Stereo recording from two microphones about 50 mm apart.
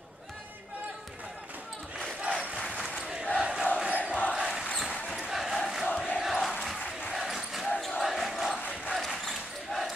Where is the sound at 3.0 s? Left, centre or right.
Centre.